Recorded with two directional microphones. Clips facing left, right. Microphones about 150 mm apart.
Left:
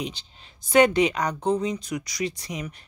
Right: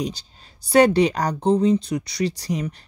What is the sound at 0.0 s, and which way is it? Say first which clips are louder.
Speech: right 5 dB; 40° right (ahead or behind).